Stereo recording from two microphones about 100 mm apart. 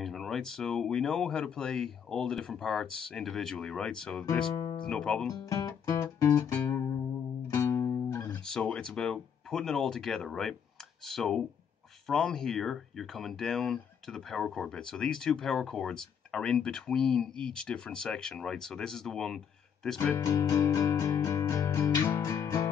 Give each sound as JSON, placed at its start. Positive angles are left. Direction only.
{"t": 0.0, "sound": "speech", "side_deg": 0}
{"t": 5.3, "sound": "music", "side_deg": 30}
{"t": 8.5, "sound": "speech", "side_deg": 5}
{"t": 20.2, "sound": "music", "side_deg": 30}